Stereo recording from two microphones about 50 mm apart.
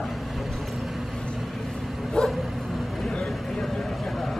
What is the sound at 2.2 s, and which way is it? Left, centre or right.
Bow-wow, centre.